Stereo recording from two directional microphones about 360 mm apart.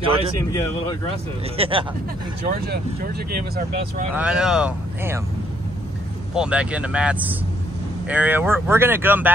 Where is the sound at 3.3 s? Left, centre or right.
Right.